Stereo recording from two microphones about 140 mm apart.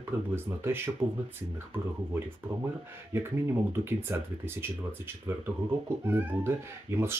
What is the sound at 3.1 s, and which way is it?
Speech, 15° right (ahead or behind).